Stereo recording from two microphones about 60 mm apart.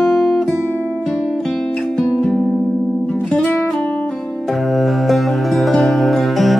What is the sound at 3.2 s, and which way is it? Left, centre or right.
Music, centre.